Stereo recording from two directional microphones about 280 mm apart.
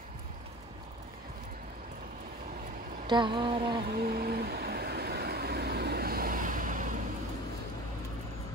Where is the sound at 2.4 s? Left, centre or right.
Right.